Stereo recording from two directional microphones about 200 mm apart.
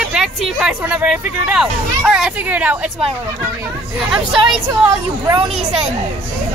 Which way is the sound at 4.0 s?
Centre (ahead or behind).